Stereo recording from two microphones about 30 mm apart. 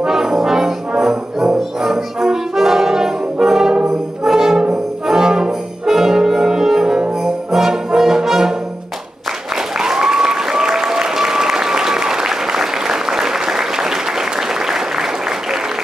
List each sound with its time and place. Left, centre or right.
0.0 s brass instrument: centre
9.8 s applause: centre